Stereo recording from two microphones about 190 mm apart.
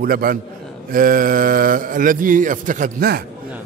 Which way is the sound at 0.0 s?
50° right (ahead or behind).